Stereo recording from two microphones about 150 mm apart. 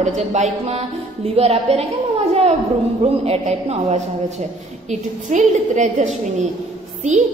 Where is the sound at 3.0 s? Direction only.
45° right (ahead or behind).